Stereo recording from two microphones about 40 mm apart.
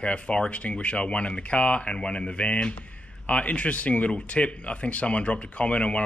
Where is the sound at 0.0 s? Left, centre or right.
Left.